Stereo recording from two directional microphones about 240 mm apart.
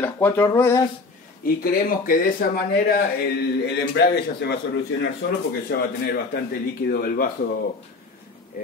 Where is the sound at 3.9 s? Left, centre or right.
Left.